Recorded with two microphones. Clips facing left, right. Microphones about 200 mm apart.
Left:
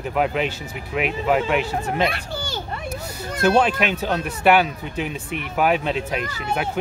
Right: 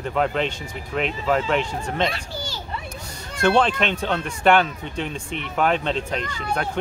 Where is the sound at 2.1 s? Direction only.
60° left (ahead or behind).